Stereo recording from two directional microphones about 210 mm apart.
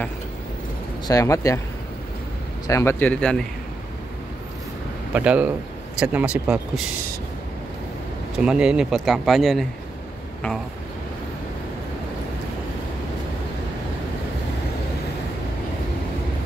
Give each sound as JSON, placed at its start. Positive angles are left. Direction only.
{"t": 1.0, "sound": "a man's voice", "side_deg": 15}
{"t": 2.6, "sound": "a man's voice", "side_deg": 15}
{"t": 5.1, "sound": "speech", "side_deg": -5}
{"t": 8.4, "sound": "speech", "side_deg": -5}